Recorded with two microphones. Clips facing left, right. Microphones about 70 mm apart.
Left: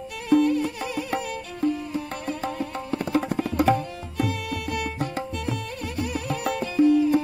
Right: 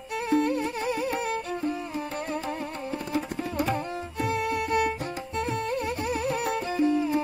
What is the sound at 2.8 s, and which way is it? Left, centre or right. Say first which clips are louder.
Tabla: left 6 dB; left.